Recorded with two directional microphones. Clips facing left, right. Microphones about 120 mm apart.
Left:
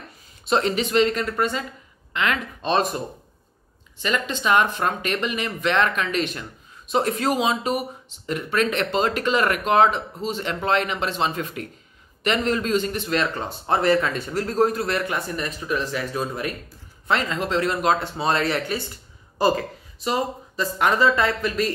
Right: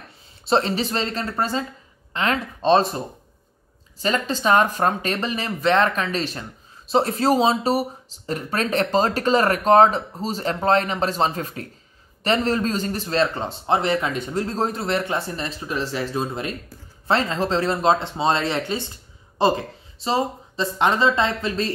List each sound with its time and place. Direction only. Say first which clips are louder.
0.5 s speech: right 1 dB; 30° right (ahead or behind)
4.0 s speech: right 3 dB; 35° right (ahead or behind)